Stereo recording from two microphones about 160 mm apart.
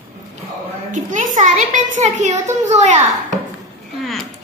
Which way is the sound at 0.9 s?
50° right (ahead or behind).